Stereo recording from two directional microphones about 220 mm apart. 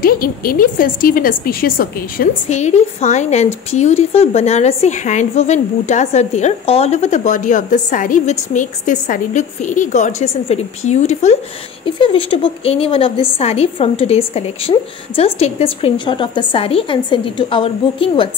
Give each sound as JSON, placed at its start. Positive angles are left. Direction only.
{"t": 0.0, "sound": "a woman's voice", "side_deg": 40}